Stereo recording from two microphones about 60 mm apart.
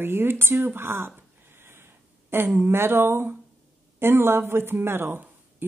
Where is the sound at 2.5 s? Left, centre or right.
Right.